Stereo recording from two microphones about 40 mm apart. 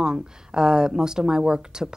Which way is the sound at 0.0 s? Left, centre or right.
Centre.